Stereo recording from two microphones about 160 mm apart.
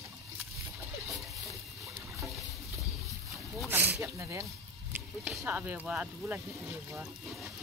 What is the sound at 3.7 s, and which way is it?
Snake, 15° right (ahead or behind).